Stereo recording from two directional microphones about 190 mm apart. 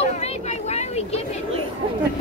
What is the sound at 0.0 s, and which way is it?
Vehicle, 35° left (ahead or behind).